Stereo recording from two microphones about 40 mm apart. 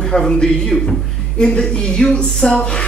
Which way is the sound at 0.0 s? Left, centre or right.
Centre.